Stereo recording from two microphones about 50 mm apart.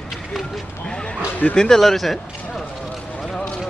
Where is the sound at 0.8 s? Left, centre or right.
Centre.